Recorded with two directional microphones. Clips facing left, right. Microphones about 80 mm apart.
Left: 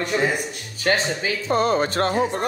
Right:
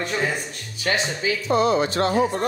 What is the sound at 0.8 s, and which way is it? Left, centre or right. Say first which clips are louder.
Speech: left 2 dB; left.